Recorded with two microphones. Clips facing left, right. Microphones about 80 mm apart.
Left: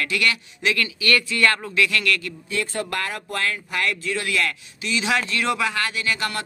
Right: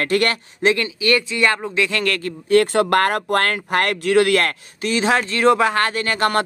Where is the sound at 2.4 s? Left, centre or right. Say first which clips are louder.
Right 15 dB; right.